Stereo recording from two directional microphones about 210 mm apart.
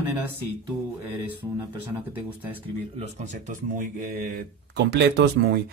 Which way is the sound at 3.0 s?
35° right (ahead or behind).